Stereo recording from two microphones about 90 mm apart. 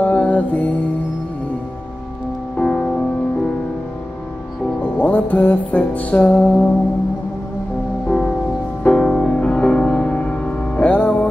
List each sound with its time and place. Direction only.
0.0 s music: 15° left (ahead or behind)
2.5 s music: 10° left (ahead or behind)
4.8 s music: 20° left (ahead or behind)
8.8 s music: 10° left (ahead or behind)